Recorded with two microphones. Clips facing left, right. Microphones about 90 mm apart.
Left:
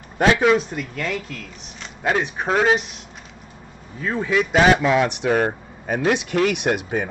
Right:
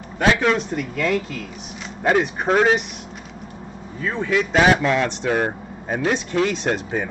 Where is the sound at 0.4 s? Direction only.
5° left (ahead or behind).